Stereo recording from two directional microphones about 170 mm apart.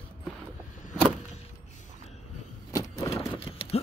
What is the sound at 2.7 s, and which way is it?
Vehicle, 20° left (ahead or behind).